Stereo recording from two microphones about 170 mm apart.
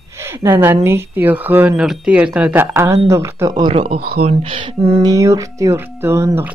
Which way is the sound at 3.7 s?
35° right (ahead or behind).